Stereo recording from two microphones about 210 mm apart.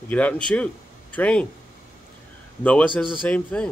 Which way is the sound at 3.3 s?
5° left (ahead or behind).